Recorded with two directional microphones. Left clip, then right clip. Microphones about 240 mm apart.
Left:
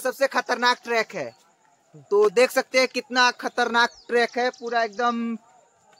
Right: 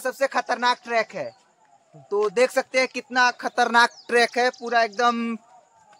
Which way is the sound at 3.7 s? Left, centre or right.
Right.